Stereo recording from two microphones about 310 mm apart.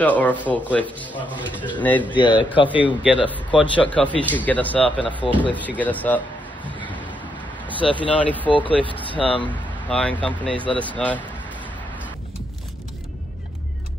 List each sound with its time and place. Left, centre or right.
0.0 s a man's voice: centre
2.7 s speech: centre
4.9 s a man's voice: centre
5.8 s speech: centre
7.8 s a man's voice: centre
8.1 s speech: centre
8.5 s a man's voice: centre
9.8 s speech: centre